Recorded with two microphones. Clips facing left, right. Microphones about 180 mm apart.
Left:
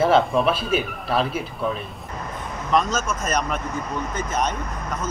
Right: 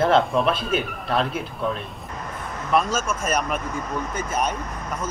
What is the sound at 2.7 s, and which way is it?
Speech, 10° right (ahead or behind).